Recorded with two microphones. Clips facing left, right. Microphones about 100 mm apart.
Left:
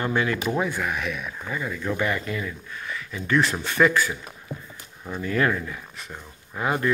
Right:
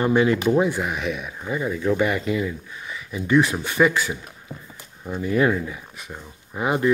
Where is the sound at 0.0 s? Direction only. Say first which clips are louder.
Right 6 dB; 20° right (ahead or behind).